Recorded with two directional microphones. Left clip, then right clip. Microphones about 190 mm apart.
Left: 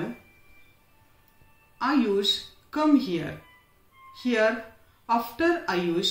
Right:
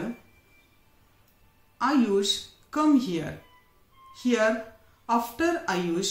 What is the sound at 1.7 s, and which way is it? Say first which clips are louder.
Music: even; 55° right (ahead or behind).